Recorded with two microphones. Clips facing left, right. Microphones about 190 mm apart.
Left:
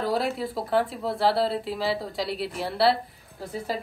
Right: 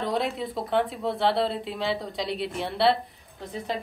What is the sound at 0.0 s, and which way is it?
Speech, 5° left (ahead or behind).